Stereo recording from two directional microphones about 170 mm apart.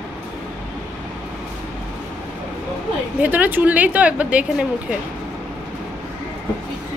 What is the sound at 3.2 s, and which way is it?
A woman's voice, 10° right (ahead or behind).